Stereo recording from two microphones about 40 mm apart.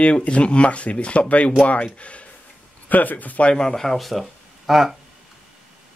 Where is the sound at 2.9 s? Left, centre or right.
Left.